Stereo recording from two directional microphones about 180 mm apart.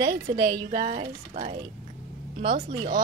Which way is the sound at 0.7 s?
30° right (ahead or behind).